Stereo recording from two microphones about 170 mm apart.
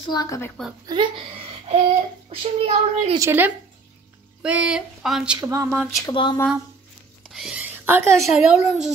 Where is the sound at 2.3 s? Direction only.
40° right (ahead or behind).